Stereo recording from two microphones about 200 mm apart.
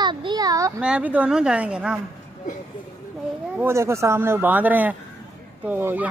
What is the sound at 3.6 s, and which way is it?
Speech, 10° right (ahead or behind).